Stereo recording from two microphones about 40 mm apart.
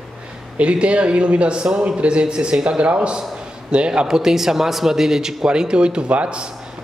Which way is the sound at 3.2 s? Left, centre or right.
Right.